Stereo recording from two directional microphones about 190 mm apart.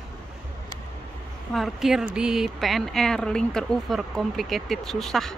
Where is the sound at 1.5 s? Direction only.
Centre (ahead or behind).